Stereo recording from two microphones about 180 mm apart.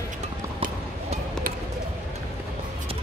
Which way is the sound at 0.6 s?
50° right (ahead or behind).